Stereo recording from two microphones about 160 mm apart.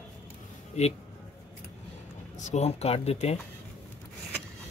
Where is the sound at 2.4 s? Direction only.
45° left (ahead or behind).